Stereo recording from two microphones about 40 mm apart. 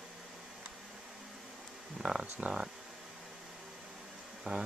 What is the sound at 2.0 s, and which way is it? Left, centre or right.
Speech, right.